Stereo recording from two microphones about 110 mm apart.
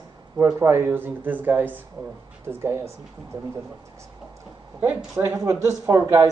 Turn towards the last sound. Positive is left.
turn(degrees=-25)  # may be behind; listen again after turning